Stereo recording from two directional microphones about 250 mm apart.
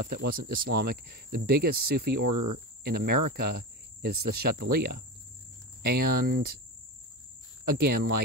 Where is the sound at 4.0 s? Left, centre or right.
Right.